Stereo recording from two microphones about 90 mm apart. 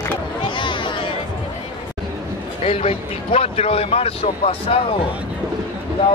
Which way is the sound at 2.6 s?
90° left.